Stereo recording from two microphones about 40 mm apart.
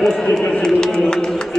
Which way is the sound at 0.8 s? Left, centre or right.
Left.